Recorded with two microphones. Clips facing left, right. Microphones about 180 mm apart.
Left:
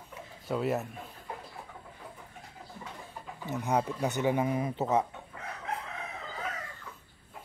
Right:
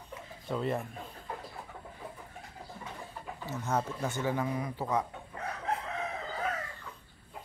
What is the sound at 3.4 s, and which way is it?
Speech, 15° left (ahead or behind).